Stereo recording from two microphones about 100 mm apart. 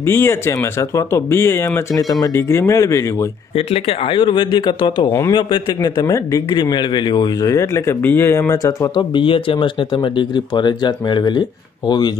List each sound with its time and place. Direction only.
0.0 s speech: 25° left (ahead or behind)
3.5 s speech: 75° left (ahead or behind); by 6.4 s 35° left (ahead or behind)
6.5 s speech: 50° left (ahead or behind)
7.5 s speech: 30° left (ahead or behind)
8.9 s speech: 60° left (ahead or behind)